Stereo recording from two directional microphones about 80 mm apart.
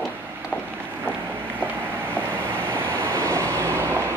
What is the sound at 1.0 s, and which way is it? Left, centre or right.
Vehicle, right.